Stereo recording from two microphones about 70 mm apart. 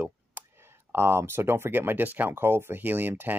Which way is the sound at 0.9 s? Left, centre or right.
Right.